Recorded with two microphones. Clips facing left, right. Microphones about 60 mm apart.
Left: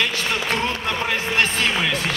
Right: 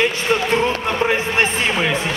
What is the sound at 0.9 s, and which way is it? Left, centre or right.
Speech, right.